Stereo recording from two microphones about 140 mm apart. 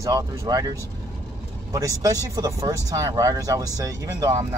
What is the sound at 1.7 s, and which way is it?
Speech, 25° right (ahead or behind).